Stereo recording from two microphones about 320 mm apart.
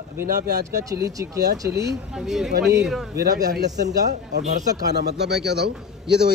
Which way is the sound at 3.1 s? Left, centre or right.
Right.